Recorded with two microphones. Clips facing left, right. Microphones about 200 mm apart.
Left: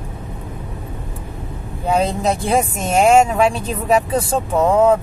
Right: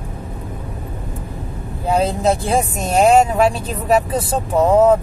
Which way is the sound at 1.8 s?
Centre (ahead or behind).